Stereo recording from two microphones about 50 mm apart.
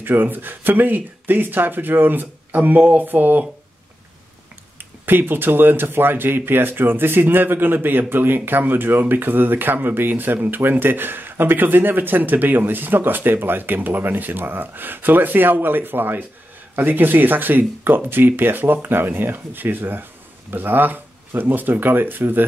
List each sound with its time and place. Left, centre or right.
0.0 s speech: right
4.7 s speech: right